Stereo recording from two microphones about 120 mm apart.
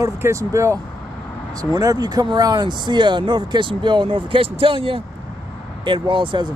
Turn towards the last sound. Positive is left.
turn(degrees=-45)  # may be behind; listen again after turning